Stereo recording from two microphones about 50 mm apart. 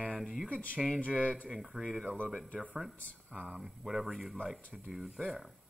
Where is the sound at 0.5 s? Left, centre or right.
Left.